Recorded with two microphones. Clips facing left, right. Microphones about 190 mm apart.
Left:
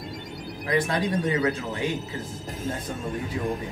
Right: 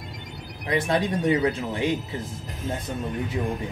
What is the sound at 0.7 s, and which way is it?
Speech, 25° right (ahead or behind).